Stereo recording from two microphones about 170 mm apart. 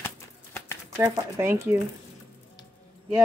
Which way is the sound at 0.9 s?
15° right (ahead or behind).